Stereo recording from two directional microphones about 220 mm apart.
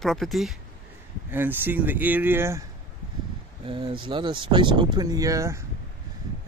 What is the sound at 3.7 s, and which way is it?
Speech, 20° right (ahead or behind).